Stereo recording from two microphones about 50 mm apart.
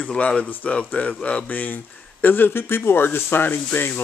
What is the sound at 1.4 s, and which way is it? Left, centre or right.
Speech, left.